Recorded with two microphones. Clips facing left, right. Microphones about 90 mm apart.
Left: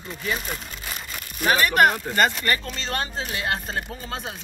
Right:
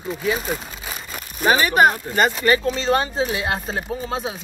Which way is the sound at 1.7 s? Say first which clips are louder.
Right 2 dB; 5° right (ahead or behind).